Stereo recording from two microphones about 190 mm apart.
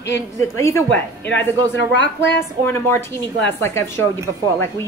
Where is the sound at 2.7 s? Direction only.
10° left (ahead or behind).